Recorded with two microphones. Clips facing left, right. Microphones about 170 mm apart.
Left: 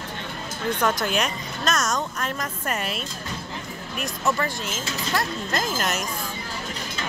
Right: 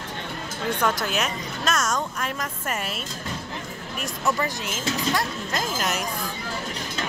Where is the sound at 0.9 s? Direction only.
5° right (ahead or behind).